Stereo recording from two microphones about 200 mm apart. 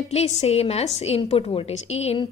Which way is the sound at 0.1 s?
35° left (ahead or behind).